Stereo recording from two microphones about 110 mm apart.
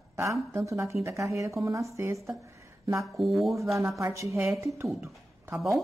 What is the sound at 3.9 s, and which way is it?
Speech, 25° right (ahead or behind).